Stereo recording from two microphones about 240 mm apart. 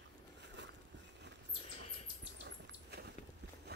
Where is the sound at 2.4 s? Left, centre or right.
Right.